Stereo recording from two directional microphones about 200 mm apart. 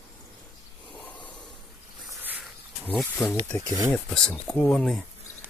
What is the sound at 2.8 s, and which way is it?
Speech, 10° left (ahead or behind).